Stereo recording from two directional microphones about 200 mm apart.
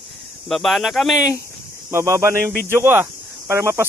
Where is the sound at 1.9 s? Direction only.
15° right (ahead or behind).